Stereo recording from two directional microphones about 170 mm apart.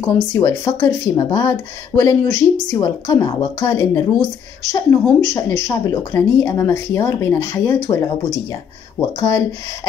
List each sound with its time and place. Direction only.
0.0 s a woman's voice: 15° left (ahead or behind)